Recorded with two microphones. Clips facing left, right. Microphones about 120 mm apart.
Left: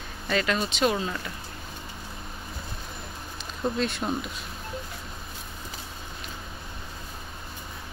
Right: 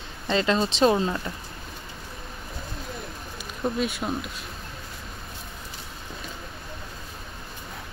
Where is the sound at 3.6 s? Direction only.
5° right (ahead or behind).